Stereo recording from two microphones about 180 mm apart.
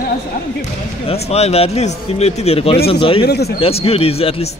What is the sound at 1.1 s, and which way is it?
Speech, 35° left (ahead or behind).